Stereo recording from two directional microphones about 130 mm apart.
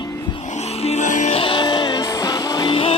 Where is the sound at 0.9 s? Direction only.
70° left (ahead or behind).